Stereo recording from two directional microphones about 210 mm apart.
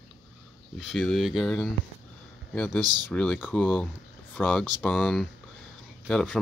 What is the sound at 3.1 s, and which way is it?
Speech, 5° left (ahead or behind).